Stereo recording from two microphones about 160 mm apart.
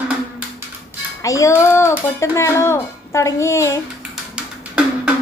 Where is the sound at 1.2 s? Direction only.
20° left (ahead or behind).